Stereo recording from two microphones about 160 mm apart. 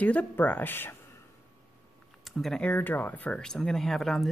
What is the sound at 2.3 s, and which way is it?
Speech, centre (ahead or behind).